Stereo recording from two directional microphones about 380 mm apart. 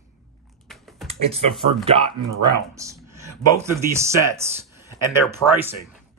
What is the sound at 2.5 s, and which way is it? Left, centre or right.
Speech, centre.